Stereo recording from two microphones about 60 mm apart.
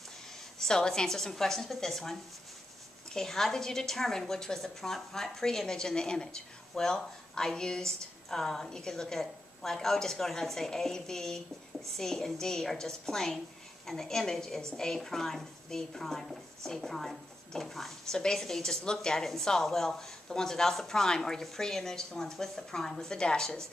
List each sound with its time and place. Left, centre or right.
0.6 s a woman's voice: centre